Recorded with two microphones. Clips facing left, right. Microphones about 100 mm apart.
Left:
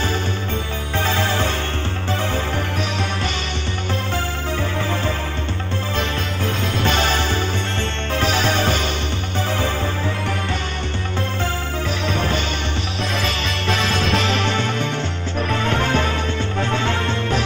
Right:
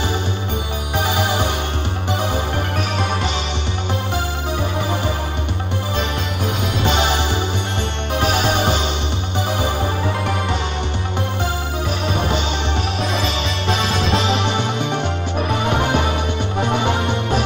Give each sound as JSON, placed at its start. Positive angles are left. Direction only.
{"t": 0.9, "sound": "music", "side_deg": -15}
{"t": 5.9, "sound": "music", "side_deg": -15}
{"t": 12.1, "sound": "music", "side_deg": -15}
{"t": 13.7, "sound": "music", "side_deg": -25}